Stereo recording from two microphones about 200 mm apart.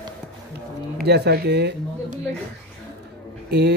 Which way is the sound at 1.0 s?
55° right (ahead or behind).